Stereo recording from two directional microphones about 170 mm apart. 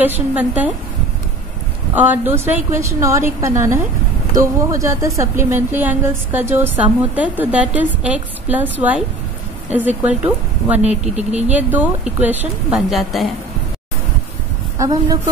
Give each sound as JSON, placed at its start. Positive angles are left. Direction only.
{"t": 0.0, "sound": "a woman's voice", "side_deg": -10}
{"t": 2.0, "sound": "a woman's voice", "side_deg": -10}
{"t": 10.8, "sound": "speech", "side_deg": -40}
{"t": 11.5, "sound": "a woman's voice", "side_deg": -10}
{"t": 14.8, "sound": "a woman's voice", "side_deg": -20}